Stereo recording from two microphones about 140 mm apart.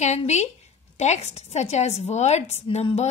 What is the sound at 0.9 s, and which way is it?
A woman's voice, 55° left (ahead or behind).